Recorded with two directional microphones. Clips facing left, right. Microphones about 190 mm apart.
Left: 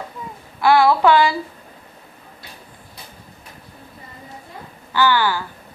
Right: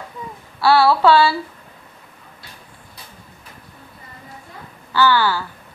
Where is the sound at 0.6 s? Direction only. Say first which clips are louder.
Even; 15° left (ahead or behind).